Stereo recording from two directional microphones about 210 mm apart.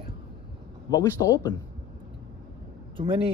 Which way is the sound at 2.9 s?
25° right (ahead or behind).